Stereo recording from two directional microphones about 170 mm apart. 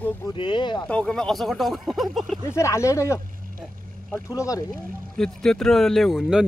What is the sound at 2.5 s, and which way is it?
Speech, 15° left (ahead or behind).